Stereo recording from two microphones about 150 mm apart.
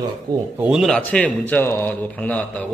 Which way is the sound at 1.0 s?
10° left (ahead or behind).